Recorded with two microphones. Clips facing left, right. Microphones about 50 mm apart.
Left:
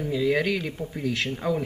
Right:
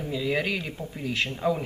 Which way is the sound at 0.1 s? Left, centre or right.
Centre.